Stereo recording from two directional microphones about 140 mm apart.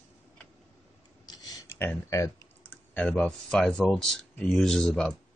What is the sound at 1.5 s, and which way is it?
Speech, 15° left (ahead or behind).